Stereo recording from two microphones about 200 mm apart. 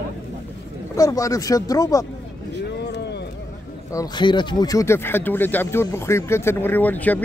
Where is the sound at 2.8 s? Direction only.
55° left (ahead or behind).